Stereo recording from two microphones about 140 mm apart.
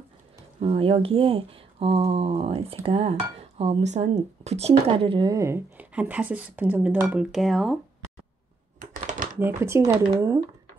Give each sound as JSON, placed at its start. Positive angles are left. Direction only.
{"t": 0.6, "sound": "speech", "side_deg": -45}
{"t": 5.3, "sound": "speech", "side_deg": -20}
{"t": 9.0, "sound": "typing", "side_deg": -65}
{"t": 9.4, "sound": "speech", "side_deg": -15}